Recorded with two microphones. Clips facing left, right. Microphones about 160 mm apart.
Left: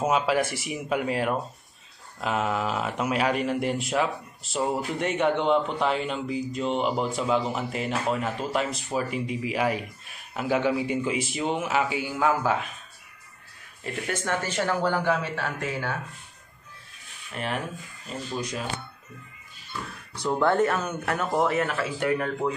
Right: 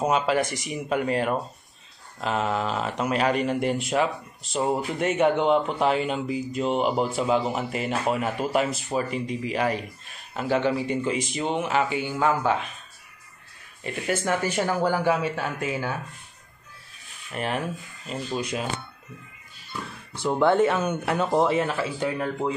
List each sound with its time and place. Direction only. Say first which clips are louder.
0.0 s speech: right 1 dB; 5° left (ahead or behind)
13.8 s speech: right 3 dB; 5° right (ahead or behind)
17.3 s speech: right 3 dB; 5° right (ahead or behind)
18.0 s speech: right 3 dB; 15° right (ahead or behind)
20.1 s speech: right 2 dB; 20° right (ahead or behind)